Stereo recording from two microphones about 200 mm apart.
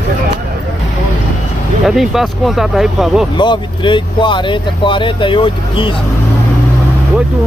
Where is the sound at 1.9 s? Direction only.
Centre (ahead or behind).